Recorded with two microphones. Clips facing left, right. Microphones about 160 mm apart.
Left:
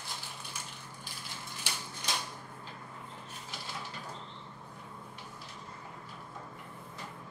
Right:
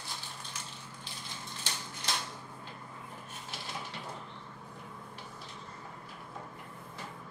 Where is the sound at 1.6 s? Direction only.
10° left (ahead or behind).